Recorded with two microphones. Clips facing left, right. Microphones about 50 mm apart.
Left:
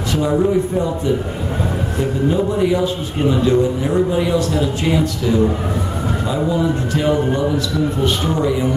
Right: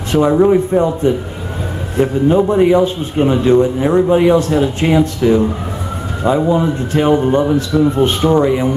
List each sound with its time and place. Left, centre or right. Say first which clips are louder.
0.4 s a man's voice: right 6 dB; right